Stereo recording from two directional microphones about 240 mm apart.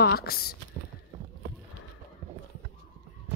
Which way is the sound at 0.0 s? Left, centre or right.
Left.